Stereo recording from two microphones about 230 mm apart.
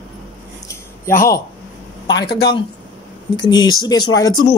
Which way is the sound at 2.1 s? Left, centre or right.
Centre.